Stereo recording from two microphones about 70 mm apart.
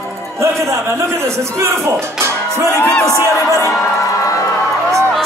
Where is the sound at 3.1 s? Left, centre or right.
Left.